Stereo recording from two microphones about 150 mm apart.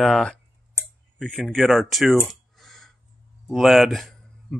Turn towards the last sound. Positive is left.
turn(degrees=0)  # may be behind; listen again after turning